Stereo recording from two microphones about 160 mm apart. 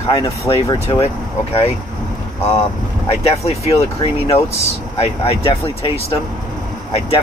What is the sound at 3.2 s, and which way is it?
Speech, 40° left (ahead or behind).